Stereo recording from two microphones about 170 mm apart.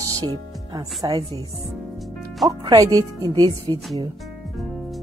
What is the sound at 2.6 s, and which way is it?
Speech, 20° right (ahead or behind).